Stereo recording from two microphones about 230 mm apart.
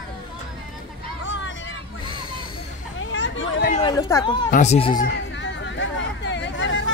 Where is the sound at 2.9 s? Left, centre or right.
Left.